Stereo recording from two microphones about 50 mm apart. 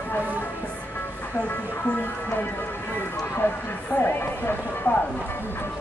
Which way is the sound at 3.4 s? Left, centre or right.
Left.